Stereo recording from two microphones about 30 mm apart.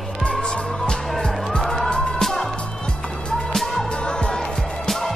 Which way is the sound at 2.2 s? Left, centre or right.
Centre.